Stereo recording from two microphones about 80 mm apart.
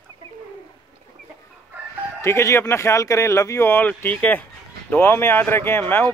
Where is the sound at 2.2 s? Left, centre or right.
Left.